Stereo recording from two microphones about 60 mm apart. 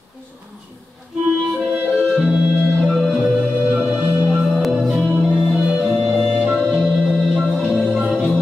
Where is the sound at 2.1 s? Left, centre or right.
Centre.